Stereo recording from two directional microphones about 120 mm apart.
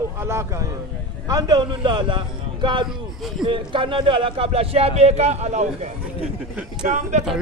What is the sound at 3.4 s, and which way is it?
Speech, 45° right (ahead or behind).